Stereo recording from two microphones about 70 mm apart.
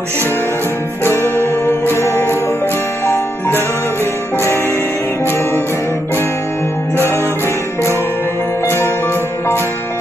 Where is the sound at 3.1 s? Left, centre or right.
Left.